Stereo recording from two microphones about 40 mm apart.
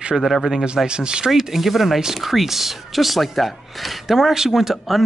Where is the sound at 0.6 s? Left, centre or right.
Right.